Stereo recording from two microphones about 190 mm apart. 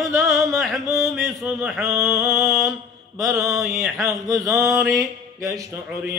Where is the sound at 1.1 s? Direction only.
Centre (ahead or behind).